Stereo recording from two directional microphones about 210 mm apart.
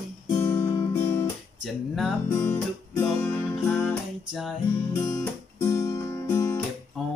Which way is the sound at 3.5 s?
Centre (ahead or behind).